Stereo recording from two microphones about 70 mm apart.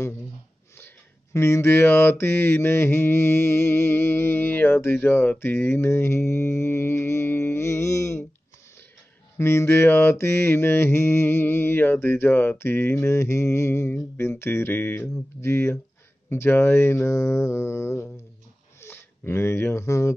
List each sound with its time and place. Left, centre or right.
0.7 s mantra: left
9.4 s mantra: left
15.4 s mantra: left
18.8 s speech: left